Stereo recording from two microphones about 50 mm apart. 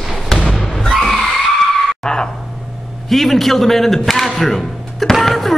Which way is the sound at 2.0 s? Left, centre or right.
Centre.